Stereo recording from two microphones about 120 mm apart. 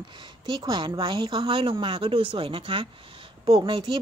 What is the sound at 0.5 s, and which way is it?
A woman's voice, 35° right (ahead or behind).